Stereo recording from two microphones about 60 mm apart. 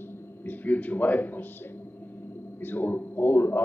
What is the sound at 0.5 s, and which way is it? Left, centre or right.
Speech, left.